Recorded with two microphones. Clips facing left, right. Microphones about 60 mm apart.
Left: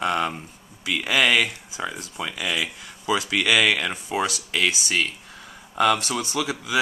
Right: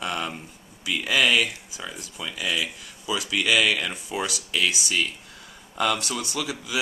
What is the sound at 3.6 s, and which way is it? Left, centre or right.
Speech, left.